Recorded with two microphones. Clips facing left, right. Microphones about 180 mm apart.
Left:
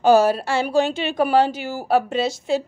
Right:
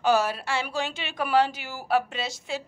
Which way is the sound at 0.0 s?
40° left (ahead or behind).